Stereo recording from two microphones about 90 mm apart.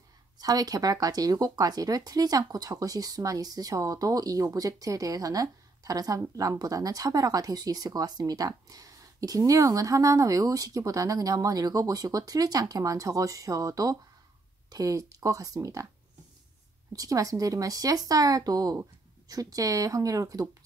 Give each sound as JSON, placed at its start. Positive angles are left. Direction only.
{"t": 0.4, "sound": "speech", "side_deg": -45}
{"t": 16.9, "sound": "speech", "side_deg": -40}